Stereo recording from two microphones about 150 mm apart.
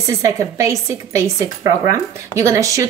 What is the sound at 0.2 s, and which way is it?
A woman's voice, 20° right (ahead or behind).